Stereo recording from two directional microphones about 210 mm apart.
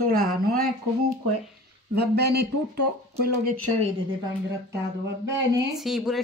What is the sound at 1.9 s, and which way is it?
Speech, 50° right (ahead or behind).